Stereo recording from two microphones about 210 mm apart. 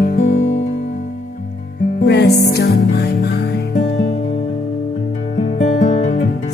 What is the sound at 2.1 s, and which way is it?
Music, 55° left (ahead or behind).